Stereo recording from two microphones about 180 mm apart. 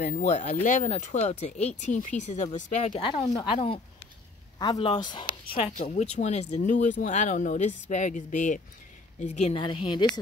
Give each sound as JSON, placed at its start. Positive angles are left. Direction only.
{"t": 0.0, "sound": "speech", "side_deg": 45}
{"t": 2.9, "sound": "speech", "side_deg": 25}